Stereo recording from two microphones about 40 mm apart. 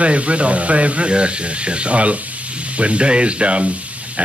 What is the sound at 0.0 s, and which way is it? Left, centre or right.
Speech, right.